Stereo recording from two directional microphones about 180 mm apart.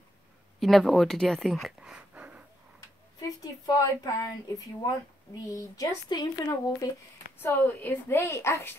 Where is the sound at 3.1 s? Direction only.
20° left (ahead or behind).